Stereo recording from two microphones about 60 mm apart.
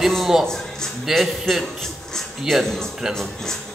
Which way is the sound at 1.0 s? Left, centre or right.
Centre.